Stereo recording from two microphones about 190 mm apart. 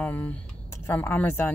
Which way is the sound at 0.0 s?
10° left (ahead or behind).